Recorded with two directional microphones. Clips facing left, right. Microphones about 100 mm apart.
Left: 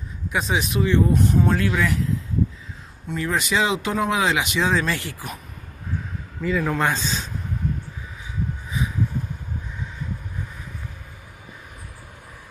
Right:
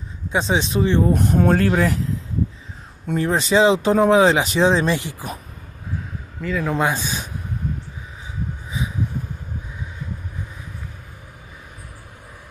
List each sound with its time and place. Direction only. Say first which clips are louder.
0.3 s speech: right 3 dB; 30° right (ahead or behind)
1.1 s speech: right 3 dB; 55° right (ahead or behind); by 2.1 s 35° right (ahead or behind)
3.2 s speech: right 6 dB; 30° right (ahead or behind)
6.4 s a man's voice: left 1 dB; centre (ahead or behind)
6.7 s speech: right 2 dB; 15° right (ahead or behind)